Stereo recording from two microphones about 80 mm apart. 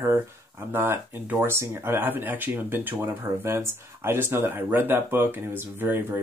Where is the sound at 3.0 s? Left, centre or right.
Right.